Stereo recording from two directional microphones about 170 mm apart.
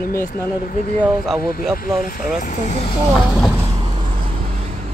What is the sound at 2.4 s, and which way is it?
Speech, 45° left (ahead or behind).